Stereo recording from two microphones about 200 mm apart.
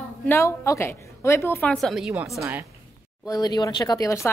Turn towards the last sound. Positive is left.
turn(degrees=15)  # may be behind; listen again after turning